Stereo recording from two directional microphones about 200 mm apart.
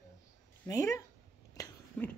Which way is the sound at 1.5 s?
15° left (ahead or behind).